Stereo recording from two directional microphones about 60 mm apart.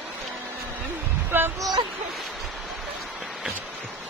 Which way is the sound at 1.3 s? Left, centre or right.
Right.